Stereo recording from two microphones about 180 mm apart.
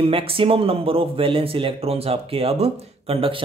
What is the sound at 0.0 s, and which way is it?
A man's voice, 30° right (ahead or behind).